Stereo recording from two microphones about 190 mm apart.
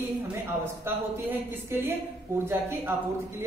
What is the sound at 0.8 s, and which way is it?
Speech, 10° right (ahead or behind).